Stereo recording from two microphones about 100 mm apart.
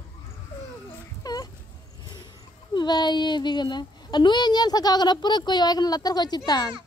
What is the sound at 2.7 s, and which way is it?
Speech, 45° left (ahead or behind).